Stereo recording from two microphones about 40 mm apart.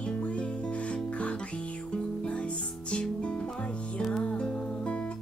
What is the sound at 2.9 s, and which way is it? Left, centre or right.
Music, left.